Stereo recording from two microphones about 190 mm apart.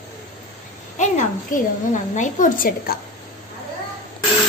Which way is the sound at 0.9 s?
40° left (ahead or behind).